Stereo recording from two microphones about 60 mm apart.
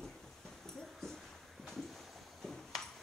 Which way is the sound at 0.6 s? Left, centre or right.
Centre.